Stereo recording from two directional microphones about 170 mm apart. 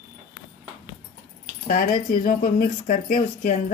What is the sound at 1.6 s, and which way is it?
Speech, 55° left (ahead or behind).